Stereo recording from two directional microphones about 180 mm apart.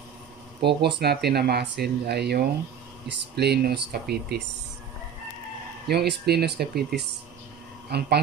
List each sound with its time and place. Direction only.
0.6 s speech: 65° right (ahead or behind)
5.9 s speech: 65° right (ahead or behind)